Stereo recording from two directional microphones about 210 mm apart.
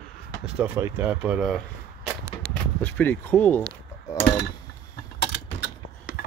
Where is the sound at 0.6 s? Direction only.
10° right (ahead or behind).